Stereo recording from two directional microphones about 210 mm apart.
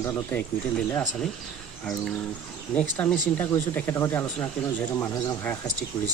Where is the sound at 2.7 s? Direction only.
5° left (ahead or behind).